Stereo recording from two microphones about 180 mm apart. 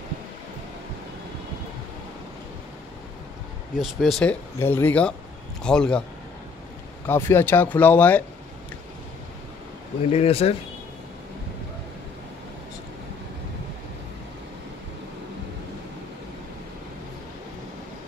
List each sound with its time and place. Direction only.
3.8 s a man's voice: centre (ahead or behind)
7.1 s speech: 10° left (ahead or behind)
10.1 s speech: 35° left (ahead or behind)